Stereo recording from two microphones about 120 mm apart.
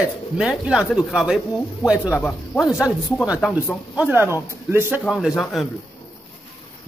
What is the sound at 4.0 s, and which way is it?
Speech, 15° right (ahead or behind).